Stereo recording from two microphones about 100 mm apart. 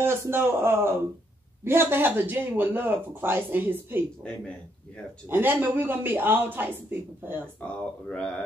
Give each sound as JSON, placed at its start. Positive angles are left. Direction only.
{"t": 0.3, "sound": "speech", "side_deg": -25}
{"t": 5.3, "sound": "speech", "side_deg": -20}
{"t": 7.6, "sound": "speech", "side_deg": 10}